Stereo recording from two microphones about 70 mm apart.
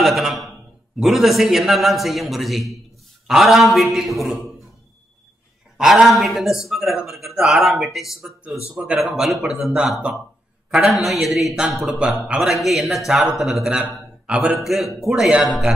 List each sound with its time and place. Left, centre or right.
0.0 s a sound: centre
0.9 s a man's voice: centre
5.8 s a man's voice: centre
8.7 s a man's voice: centre
14.2 s a man's voice: centre
14.6 s a man's voice: centre